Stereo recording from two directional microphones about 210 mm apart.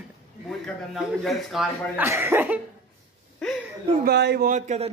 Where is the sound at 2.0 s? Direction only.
10° right (ahead or behind).